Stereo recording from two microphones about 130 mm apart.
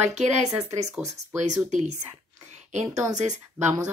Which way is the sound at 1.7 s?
65° right (ahead or behind).